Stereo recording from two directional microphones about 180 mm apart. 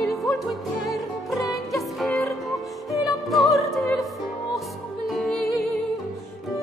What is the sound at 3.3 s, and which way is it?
Opera, centre (ahead or behind).